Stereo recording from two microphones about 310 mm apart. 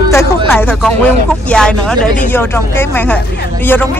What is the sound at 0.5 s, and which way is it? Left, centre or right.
Speech, centre.